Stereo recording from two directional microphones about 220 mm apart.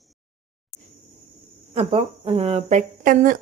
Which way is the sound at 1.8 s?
25° right (ahead or behind).